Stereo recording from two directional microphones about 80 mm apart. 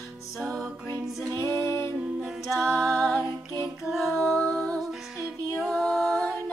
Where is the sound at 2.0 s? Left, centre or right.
Centre.